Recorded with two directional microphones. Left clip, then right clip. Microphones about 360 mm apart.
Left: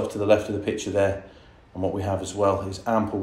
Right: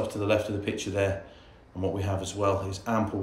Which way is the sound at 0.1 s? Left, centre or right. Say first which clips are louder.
Left 6 dB; centre.